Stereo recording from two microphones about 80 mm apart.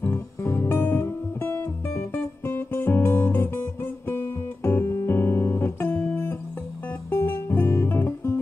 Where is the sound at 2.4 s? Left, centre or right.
Left.